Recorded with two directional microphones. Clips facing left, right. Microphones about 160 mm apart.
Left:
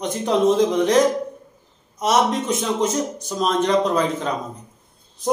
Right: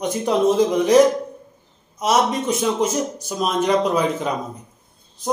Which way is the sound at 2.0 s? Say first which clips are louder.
Even; 5° right (ahead or behind).